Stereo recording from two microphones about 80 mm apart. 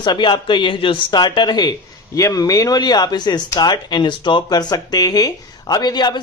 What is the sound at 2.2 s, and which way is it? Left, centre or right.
Speech, left.